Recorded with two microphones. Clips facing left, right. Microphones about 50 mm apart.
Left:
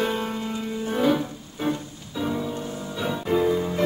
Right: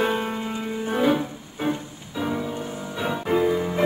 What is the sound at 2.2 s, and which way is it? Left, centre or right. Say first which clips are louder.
Music: even; centre.